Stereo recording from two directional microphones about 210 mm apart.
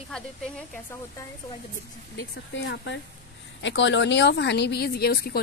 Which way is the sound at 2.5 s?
60° left (ahead or behind).